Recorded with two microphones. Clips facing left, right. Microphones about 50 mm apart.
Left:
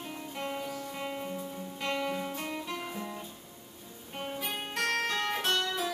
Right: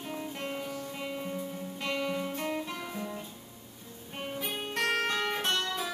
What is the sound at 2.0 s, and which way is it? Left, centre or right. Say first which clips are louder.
Music: right 2 dB; centre.